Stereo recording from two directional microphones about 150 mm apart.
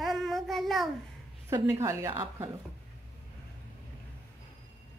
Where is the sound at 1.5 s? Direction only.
20° right (ahead or behind).